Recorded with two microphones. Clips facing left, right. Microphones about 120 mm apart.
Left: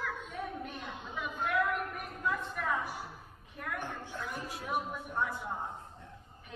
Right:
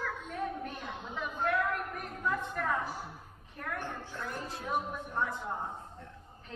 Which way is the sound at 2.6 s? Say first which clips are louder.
Right 2 dB; 5° left (ahead or behind).